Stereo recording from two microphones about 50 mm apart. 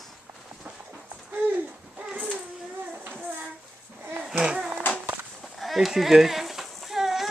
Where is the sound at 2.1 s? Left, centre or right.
Right.